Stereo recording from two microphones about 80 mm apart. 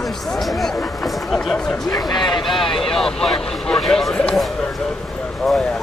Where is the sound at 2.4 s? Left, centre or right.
Centre.